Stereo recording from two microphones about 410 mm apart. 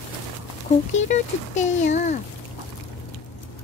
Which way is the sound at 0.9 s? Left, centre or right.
Centre.